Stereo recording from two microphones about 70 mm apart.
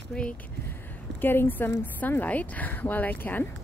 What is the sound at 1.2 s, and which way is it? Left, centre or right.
Speech, left.